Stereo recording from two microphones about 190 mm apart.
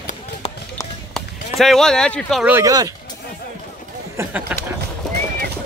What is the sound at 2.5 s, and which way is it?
Speech, 20° right (ahead or behind).